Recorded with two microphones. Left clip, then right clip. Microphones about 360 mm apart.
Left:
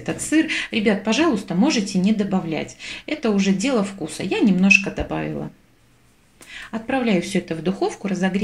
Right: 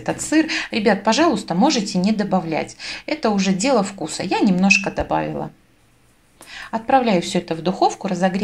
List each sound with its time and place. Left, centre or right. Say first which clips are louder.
0.0 s a woman's voice: right 2 dB; centre
6.5 s a woman's voice: right 8 dB; centre